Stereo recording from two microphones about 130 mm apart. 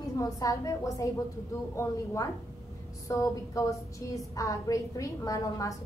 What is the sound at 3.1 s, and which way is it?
A woman's voice, 25° left (ahead or behind).